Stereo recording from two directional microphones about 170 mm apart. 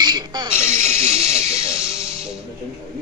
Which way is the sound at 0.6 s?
15° left (ahead or behind).